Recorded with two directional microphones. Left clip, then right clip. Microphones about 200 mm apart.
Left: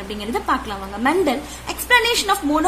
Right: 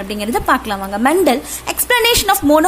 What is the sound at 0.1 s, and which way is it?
A woman's voice, 40° right (ahead or behind).